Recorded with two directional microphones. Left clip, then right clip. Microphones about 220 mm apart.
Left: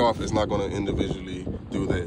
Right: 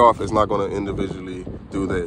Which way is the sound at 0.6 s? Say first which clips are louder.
Right 4 dB; 10° left (ahead or behind).